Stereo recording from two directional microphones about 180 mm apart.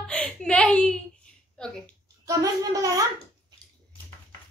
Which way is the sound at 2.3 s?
20° right (ahead or behind).